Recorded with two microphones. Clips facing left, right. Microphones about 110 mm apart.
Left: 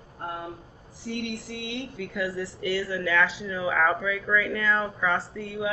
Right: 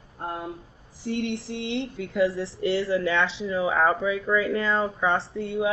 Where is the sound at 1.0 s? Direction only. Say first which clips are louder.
Right 4 dB; 30° right (ahead or behind).